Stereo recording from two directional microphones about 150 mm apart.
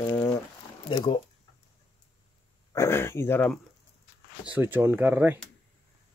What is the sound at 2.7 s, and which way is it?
Speech, 15° left (ahead or behind).